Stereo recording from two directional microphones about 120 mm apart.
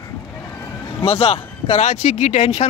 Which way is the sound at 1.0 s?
55° left (ahead or behind).